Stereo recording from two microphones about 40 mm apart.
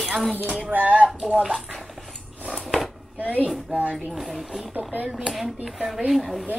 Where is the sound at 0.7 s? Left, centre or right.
Right.